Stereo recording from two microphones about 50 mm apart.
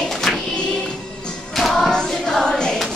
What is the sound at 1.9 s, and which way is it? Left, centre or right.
Choir, centre.